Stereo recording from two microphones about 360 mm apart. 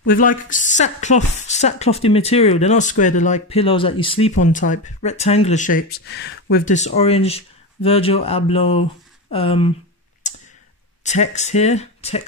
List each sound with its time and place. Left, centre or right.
0.0 s a woman's voice: left
10.2 s clicking: centre
11.1 s a woman's voice: centre